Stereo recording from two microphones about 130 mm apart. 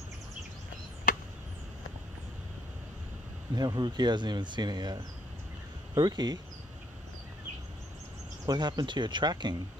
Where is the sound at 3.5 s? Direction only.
30° right (ahead or behind).